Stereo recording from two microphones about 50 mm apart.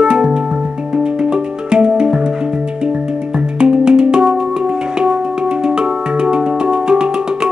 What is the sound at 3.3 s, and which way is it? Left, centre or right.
Music, centre.